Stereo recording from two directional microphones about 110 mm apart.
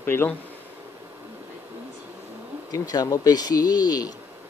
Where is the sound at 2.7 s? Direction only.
35° left (ahead or behind).